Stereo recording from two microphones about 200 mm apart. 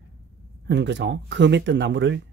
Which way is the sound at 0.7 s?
60° right (ahead or behind).